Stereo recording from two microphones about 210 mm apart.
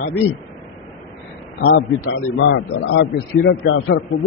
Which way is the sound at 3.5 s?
85° left.